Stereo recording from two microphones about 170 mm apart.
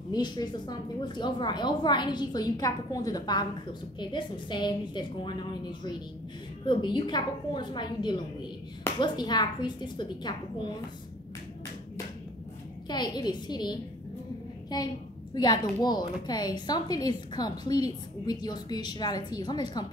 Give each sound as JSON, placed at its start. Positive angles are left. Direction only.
{"t": 0.1, "sound": "a woman's voice", "side_deg": 25}
{"t": 12.8, "sound": "a woman's voice", "side_deg": 25}